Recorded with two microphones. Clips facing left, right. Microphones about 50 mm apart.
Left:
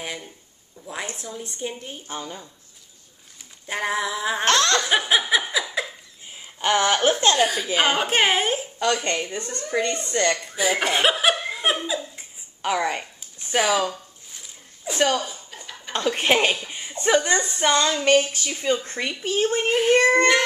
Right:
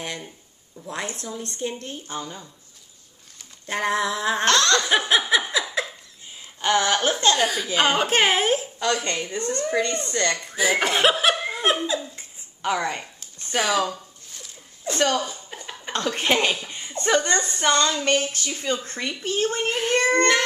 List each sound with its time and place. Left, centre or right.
0.8 s speech: centre
3.6 s speech: centre
4.5 s laughter: centre
4.8 s a sound: centre
6.4 s speech: centre
7.3 s speech: centre
9.0 s laughter: left
9.4 s a woman's voice: right
10.1 s laughter: left
10.5 s speech: centre
12.6 s speech: centre